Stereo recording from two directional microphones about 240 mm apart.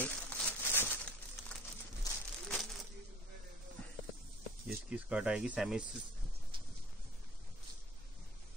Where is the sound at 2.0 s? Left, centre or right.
Centre.